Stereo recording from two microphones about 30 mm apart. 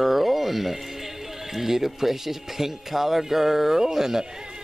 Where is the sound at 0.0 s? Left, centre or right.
Centre.